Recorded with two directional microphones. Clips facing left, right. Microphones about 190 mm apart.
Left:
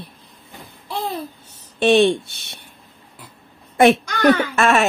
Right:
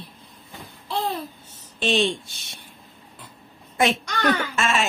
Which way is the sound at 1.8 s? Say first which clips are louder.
Left 8 dB; 60° left (ahead or behind).